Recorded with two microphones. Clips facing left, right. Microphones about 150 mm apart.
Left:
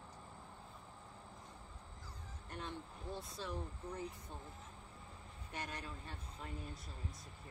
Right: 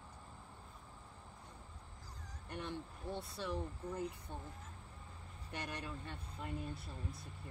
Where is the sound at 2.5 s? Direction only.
70° right (ahead or behind).